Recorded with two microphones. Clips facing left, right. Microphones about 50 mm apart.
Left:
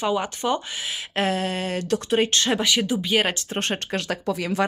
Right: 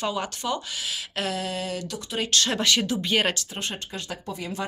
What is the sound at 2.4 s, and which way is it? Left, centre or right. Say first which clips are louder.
Speech: left 2 dB; centre.